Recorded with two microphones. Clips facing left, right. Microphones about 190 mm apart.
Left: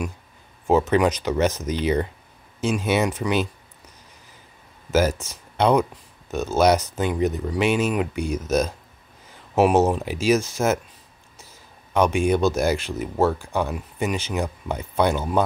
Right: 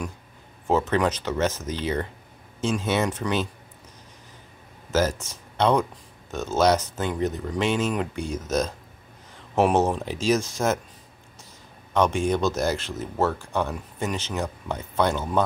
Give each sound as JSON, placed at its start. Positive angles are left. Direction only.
{"t": 0.7, "sound": "speech", "side_deg": 10}
{"t": 5.6, "sound": "speech", "side_deg": 10}
{"t": 11.9, "sound": "speech", "side_deg": 10}